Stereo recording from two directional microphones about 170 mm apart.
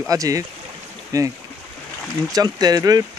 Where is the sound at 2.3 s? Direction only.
20° right (ahead or behind).